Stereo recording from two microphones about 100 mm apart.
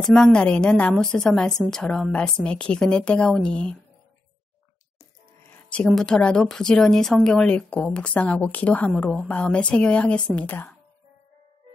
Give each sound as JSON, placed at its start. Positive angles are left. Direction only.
{"t": 0.0, "sound": "a woman's voice", "side_deg": 5}
{"t": 5.5, "sound": "a sound", "side_deg": 10}
{"t": 5.9, "sound": "a woman's voice", "side_deg": 5}